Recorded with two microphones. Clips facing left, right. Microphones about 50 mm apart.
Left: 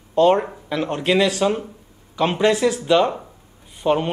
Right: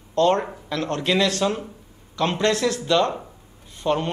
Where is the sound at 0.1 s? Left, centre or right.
Centre.